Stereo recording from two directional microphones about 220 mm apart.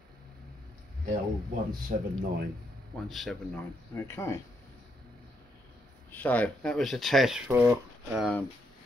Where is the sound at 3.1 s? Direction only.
Centre (ahead or behind).